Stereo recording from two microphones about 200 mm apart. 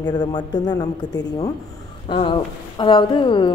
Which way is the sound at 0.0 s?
20° left (ahead or behind).